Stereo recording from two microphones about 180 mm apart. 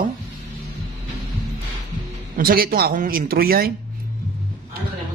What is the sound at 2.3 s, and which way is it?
Speech, 55° right (ahead or behind).